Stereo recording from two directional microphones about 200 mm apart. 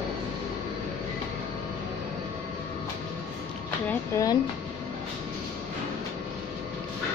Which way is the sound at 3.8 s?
15° left (ahead or behind).